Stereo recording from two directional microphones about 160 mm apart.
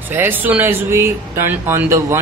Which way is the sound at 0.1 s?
10° right (ahead or behind).